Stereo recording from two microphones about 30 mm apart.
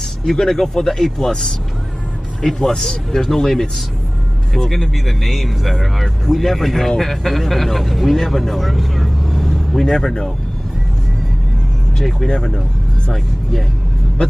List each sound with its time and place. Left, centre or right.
0.2 s speech: centre
2.4 s speech: centre
9.3 s vehicle: centre
9.8 s speech: centre
13.1 s speech: centre